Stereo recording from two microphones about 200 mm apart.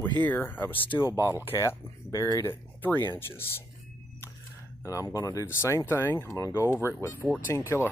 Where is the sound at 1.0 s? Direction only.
15° right (ahead or behind).